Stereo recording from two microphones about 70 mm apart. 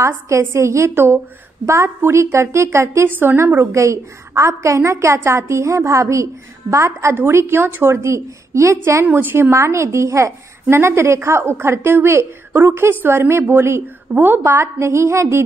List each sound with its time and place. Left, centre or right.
0.0 s a woman's voice: right
3.1 s a woman's voice: right
9.0 s a woman's voice: right
9.5 s a woman's voice: right